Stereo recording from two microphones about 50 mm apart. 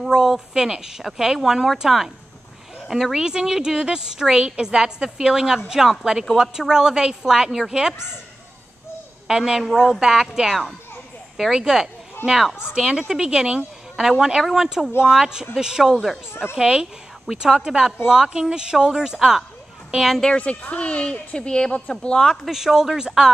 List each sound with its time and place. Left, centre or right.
0.0 s a woman's voice: centre
9.3 s a woman's voice: centre
12.7 s a woman's voice: centre
16.5 s a woman's voice: centre
20.3 s a woman's voice: left; by 22.5 s centre
22.5 s a woman's voice: centre